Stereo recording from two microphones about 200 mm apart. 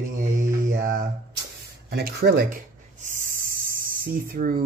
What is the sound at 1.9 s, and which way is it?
Speech, 50° right (ahead or behind).